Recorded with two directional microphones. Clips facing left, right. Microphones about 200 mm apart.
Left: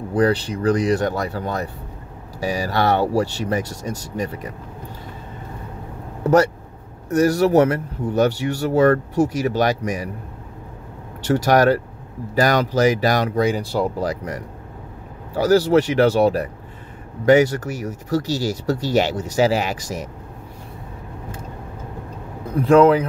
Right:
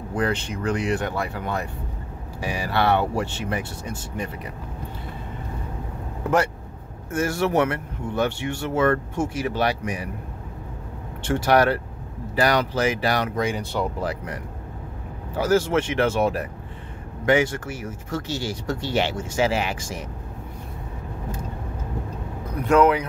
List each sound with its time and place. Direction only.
0.1 s speech: 35° left (ahead or behind)
7.1 s speech: 40° left (ahead or behind)
11.2 s speech: 40° left (ahead or behind)
22.6 s speech: 30° left (ahead or behind)